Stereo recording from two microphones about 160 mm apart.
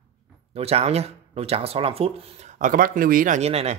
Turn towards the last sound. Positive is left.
turn(degrees=-40)  # may be behind; listen again after turning